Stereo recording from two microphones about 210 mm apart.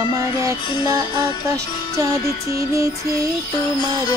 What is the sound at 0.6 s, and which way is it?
Music, 25° left (ahead or behind).